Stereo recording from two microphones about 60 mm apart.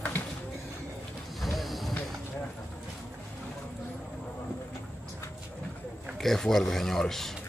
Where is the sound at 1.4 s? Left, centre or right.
Centre.